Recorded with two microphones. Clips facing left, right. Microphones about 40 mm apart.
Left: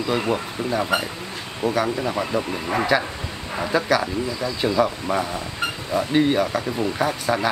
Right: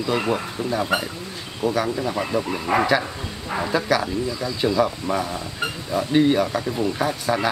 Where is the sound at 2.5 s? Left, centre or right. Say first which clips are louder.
Right 3 dB; centre.